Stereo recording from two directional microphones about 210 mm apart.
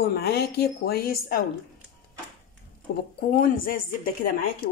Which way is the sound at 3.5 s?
40° left (ahead or behind).